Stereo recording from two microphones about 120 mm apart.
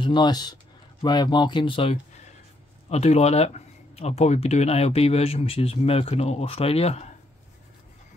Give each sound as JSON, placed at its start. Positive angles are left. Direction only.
{"t": 0.0, "sound": "speech", "side_deg": 40}